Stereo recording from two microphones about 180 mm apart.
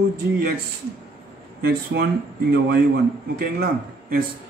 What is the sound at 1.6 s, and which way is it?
Speech, 65° right (ahead or behind).